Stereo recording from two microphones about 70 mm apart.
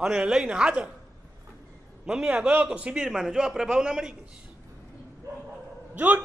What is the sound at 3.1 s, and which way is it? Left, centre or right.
A man's voice, centre.